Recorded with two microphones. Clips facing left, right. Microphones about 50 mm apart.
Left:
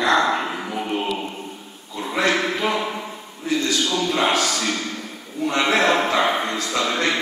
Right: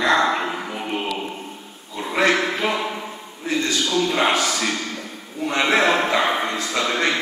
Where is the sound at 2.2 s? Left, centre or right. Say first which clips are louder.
Right 2 dB; right.